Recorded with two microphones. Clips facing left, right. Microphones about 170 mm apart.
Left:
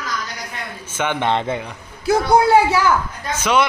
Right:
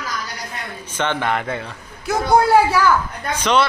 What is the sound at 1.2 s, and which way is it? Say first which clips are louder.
Speech: left 2 dB; 20° left (ahead or behind).